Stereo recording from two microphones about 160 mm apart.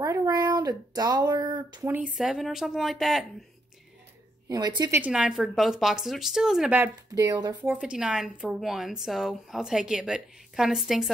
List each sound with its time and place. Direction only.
0.0 s a sound: 20° right (ahead or behind)
1.8 s a woman's voice: 10° right (ahead or behind)
4.5 s speech: 25° right (ahead or behind)
5.0 s a woman's voice: 5° right (ahead or behind)
6.8 s speech: 20° right (ahead or behind)
7.6 s a woman's voice: 10° right (ahead or behind)